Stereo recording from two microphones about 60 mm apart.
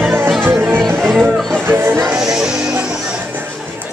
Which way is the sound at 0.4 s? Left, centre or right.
Right.